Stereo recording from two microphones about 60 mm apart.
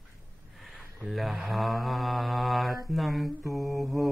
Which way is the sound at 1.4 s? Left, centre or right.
Centre.